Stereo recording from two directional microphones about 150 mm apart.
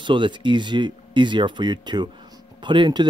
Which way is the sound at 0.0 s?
30° right (ahead or behind).